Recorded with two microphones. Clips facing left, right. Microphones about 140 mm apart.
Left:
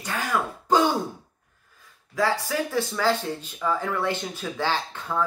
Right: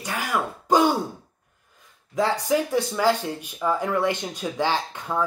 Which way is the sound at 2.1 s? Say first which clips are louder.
Right 3 dB; 20° right (ahead or behind).